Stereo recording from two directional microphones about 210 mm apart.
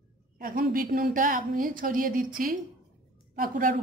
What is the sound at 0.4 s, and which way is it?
A woman's voice, 40° right (ahead or behind).